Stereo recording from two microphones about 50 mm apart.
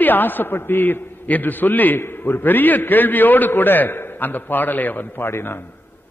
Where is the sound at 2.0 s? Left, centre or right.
Left.